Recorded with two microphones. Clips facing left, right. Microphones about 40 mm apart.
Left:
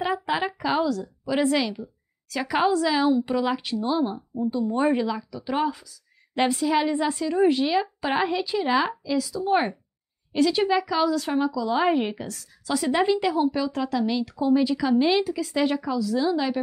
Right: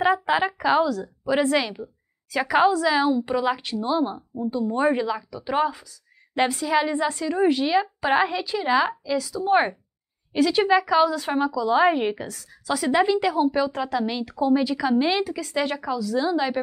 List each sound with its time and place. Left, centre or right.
0.5 s a woman's voice: centre
1.0 s a woman's voice: centre
13.5 s a woman's voice: centre
14.4 s a woman's voice: centre